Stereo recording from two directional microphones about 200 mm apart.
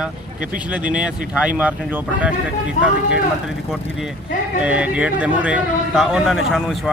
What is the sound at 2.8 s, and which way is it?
Speech, 40° left (ahead or behind).